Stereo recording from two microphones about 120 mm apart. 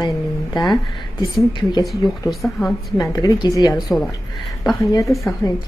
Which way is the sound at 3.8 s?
Centre (ahead or behind).